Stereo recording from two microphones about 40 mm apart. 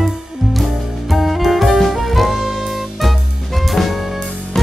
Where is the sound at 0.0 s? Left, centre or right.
Centre.